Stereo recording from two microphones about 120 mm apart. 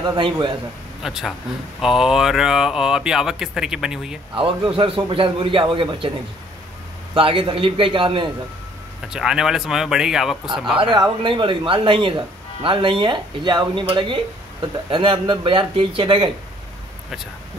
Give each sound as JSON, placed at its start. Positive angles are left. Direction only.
{"t": 0.0, "sound": "a man's voice", "side_deg": -40}
{"t": 1.0, "sound": "speech", "side_deg": -5}
{"t": 4.4, "sound": "a man's voice", "side_deg": -45}
{"t": 7.2, "sound": "a man's voice", "side_deg": -45}
{"t": 9.1, "sound": "speech", "side_deg": -5}
{"t": 10.8, "sound": "a man's voice", "side_deg": -45}